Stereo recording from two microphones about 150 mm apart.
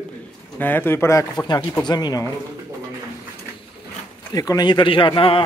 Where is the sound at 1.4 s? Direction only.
25° left (ahead or behind).